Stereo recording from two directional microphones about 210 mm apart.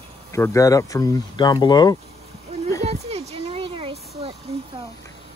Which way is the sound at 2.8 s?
30° right (ahead or behind).